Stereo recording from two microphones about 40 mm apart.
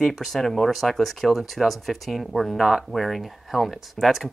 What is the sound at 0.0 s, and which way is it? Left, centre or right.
Speech, centre.